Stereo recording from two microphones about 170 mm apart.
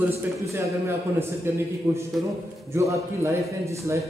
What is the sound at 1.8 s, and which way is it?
A man's voice, 15° right (ahead or behind).